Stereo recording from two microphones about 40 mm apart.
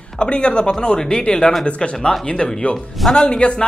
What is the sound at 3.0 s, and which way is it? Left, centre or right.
Speech, centre.